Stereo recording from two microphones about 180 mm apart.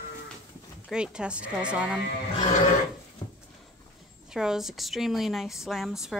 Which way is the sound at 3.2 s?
35° left (ahead or behind).